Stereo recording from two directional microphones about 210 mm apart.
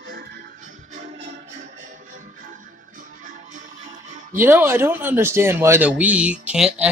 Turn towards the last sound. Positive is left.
turn(degrees=-5)  # may be behind; listen again after turning